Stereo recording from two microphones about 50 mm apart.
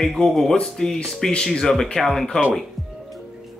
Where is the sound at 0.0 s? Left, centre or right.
Centre.